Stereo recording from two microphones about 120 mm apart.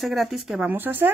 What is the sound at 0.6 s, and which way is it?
Speech, 15° right (ahead or behind).